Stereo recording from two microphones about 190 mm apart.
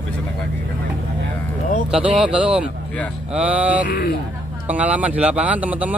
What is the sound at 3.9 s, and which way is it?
Speech, 55° left (ahead or behind).